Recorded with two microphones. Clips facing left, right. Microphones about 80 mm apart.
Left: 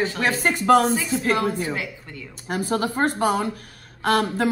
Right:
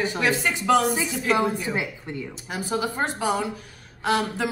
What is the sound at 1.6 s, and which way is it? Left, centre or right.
Speech, right.